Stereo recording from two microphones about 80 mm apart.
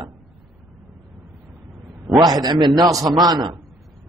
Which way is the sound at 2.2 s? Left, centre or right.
Right.